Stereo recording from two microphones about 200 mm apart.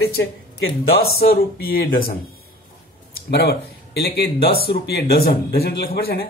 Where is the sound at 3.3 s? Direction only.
55° left (ahead or behind).